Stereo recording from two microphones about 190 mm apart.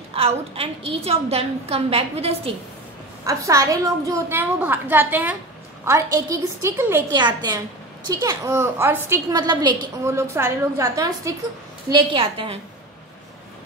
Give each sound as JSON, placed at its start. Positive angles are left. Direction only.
{"t": 0.1, "sound": "a woman's voice", "side_deg": -30}
{"t": 3.3, "sound": "a woman's voice", "side_deg": -15}
{"t": 11.9, "sound": "a woman's voice", "side_deg": -25}